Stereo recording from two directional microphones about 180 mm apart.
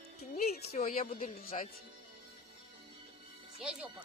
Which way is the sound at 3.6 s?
5° right (ahead or behind).